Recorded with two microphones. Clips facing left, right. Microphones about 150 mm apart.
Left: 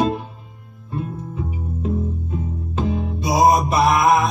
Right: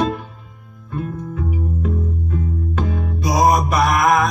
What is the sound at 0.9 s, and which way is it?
Music, 30° left (ahead or behind).